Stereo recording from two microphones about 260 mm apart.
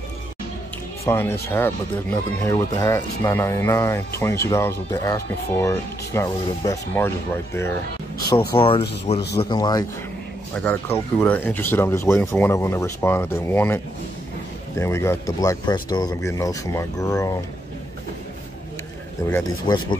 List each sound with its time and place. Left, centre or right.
1.0 s speech: centre
8.5 s speech: left
14.8 s speech: centre
19.2 s speech: centre